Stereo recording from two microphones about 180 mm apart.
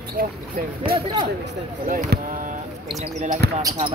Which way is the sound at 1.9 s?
50° right (ahead or behind).